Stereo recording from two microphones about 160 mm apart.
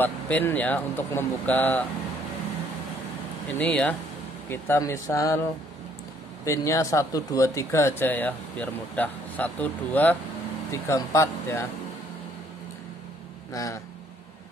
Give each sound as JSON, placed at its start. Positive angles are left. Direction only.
{"t": 0.0, "sound": "speech", "side_deg": 10}
{"t": 3.5, "sound": "speech", "side_deg": 10}
{"t": 6.4, "sound": "speech", "side_deg": 20}
{"t": 13.5, "sound": "speech", "side_deg": 20}